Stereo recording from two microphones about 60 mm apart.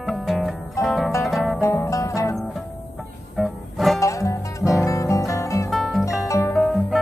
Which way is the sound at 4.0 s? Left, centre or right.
Left.